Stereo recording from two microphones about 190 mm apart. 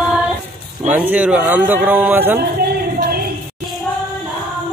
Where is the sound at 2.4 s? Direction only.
55° right (ahead or behind).